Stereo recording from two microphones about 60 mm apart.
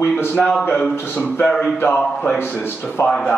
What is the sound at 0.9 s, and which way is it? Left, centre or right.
Speech, left.